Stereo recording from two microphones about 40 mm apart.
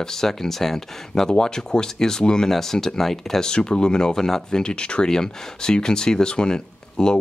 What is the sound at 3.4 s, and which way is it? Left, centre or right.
Speech, centre.